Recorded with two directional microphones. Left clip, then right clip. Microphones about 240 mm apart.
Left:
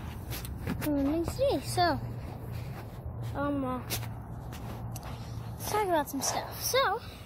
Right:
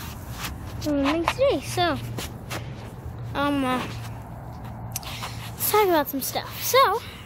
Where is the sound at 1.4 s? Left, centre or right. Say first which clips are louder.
Right 7 dB; right.